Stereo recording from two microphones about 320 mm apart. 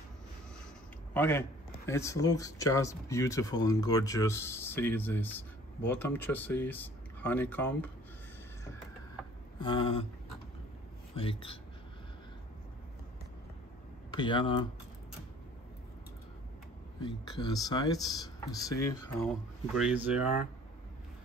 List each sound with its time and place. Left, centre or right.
1.1 s a man's voice: centre
9.6 s speech: centre
11.1 s speech: centre
14.1 s speech: centre
17.0 s speech: centre
19.7 s speech: centre